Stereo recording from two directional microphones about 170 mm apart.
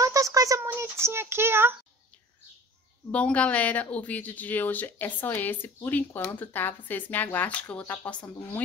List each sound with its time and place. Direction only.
0.0 s a sound: 20° right (ahead or behind)
0.7 s child singing: 15° right (ahead or behind)
3.1 s speech: 5° left (ahead or behind)